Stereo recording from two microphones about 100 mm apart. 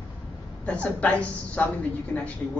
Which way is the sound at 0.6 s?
10° left (ahead or behind).